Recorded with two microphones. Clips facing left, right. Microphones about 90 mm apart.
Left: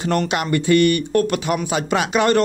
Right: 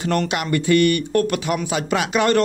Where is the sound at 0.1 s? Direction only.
25° left (ahead or behind).